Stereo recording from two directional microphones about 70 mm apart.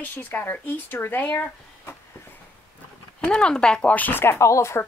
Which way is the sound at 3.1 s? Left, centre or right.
Centre.